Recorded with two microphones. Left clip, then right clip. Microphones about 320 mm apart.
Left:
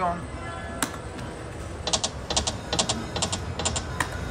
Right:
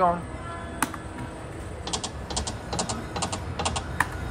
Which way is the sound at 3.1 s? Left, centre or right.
Centre.